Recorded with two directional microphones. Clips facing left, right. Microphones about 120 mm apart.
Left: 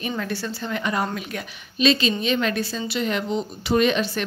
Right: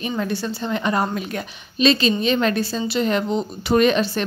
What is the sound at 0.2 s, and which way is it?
A woman's voice, 20° right (ahead or behind).